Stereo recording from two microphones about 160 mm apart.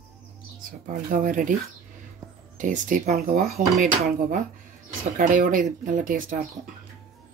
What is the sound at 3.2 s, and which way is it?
Speech, 65° right (ahead or behind).